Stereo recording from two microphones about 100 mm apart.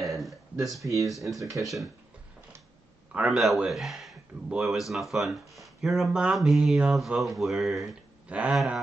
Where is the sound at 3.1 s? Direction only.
5° right (ahead or behind).